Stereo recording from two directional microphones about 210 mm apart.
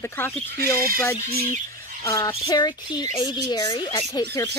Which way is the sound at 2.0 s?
15° left (ahead or behind).